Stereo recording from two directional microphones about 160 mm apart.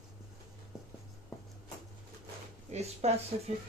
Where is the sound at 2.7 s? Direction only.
40° right (ahead or behind).